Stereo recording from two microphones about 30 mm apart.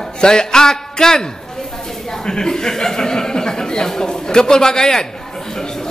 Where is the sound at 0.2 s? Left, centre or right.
Left.